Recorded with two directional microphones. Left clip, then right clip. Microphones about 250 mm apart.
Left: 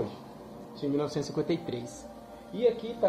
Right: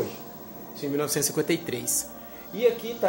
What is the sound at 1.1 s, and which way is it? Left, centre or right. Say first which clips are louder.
Speech: right 5 dB; centre.